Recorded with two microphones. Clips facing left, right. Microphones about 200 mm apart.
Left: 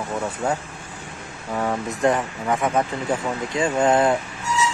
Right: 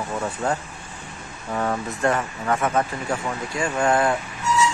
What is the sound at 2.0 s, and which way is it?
Speech, 15° left (ahead or behind).